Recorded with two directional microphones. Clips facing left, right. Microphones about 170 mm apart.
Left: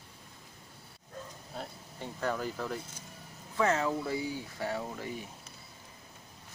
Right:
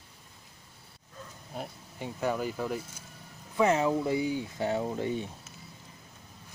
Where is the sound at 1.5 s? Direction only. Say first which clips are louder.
Right 4 dB; 15° right (ahead or behind).